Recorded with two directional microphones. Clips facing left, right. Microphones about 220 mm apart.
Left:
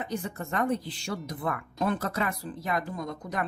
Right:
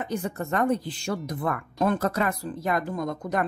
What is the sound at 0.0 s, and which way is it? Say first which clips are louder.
Speech: right 4 dB; 45° right (ahead or behind).